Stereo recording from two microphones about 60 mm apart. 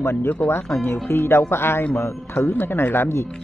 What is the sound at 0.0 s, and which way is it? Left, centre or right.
Speech, left.